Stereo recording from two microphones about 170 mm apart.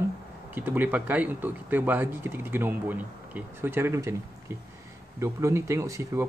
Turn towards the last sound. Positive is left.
turn(degrees=-15)  # may be behind; listen again after turning